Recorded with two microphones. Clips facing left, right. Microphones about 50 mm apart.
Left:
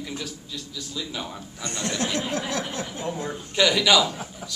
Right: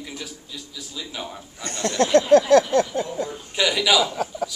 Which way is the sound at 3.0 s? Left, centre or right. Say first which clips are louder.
Right 1 dB; left.